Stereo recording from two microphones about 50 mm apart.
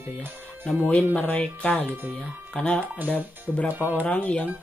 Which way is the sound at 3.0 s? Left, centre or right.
Left.